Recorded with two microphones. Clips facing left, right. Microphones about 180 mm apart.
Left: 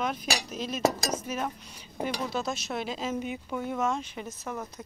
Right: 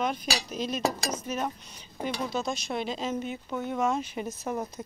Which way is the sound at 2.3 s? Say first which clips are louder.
Right 1 dB; 5° left (ahead or behind).